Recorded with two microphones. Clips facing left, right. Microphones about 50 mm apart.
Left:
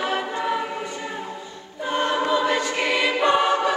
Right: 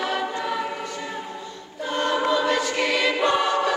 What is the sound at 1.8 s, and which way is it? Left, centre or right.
Choir, centre.